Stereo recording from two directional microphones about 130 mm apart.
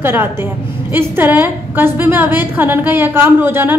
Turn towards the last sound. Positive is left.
turn(degrees=-15)  # may be behind; listen again after turning